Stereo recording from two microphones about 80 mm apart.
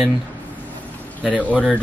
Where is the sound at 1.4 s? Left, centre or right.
Centre.